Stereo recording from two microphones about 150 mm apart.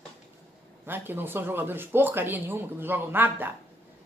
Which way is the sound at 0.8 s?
15° right (ahead or behind).